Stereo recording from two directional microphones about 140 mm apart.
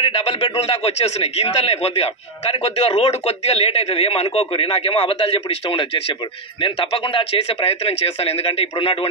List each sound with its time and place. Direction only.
0.0 s a man's voice: 45° left (ahead or behind)